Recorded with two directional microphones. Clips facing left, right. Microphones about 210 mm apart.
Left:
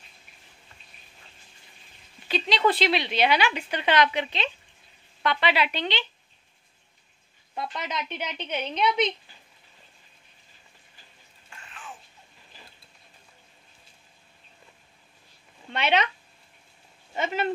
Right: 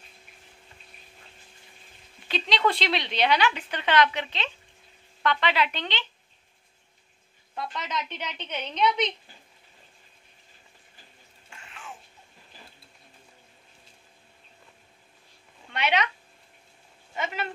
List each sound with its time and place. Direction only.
2.2 s a woman's voice: 5° left (ahead or behind)
7.5 s a woman's voice: 10° left (ahead or behind)
15.7 s speech: 25° left (ahead or behind)
17.1 s speech: 30° left (ahead or behind)